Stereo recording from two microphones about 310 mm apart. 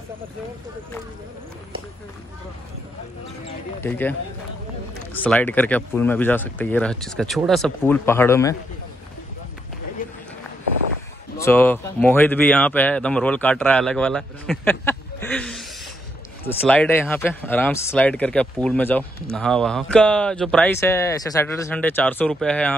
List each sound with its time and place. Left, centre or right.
3.8 s speech: centre
5.1 s speech: centre
10.0 s run: left
11.3 s speech: centre